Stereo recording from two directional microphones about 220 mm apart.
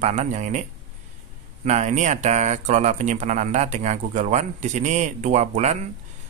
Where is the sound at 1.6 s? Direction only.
30° right (ahead or behind).